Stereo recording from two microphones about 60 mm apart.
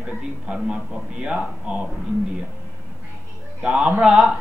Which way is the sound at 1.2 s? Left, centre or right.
Centre.